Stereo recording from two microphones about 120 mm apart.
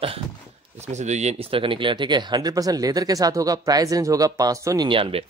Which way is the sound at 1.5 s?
45° right (ahead or behind).